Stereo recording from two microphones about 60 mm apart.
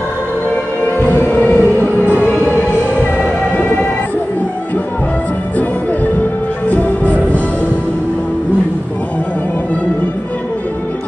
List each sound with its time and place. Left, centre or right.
0.8 s music: left
6.7 s music: left